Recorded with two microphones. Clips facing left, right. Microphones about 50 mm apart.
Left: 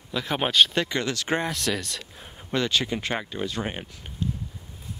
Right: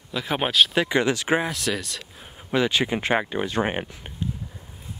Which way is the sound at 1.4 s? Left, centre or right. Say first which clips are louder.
Right 1 dB; centre.